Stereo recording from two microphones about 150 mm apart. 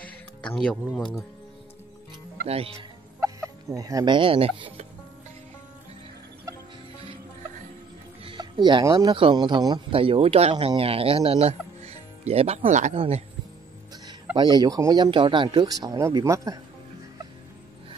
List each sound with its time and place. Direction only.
0.9 s speech: 5° left (ahead or behind)
2.4 s speech: 40° right (ahead or behind)
3.2 s speech: 20° right (ahead or behind); by 4.8 s 40° right (ahead or behind)
8.2 s speech: 35° right (ahead or behind); by 13.0 s 55° right (ahead or behind)
14.3 s speech: 30° right (ahead or behind)